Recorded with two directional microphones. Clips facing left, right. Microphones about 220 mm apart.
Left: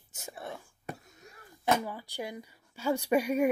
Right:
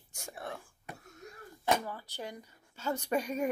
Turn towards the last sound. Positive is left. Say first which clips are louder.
# left 6 dB
turn(degrees=10)  # may be behind; listen again after turning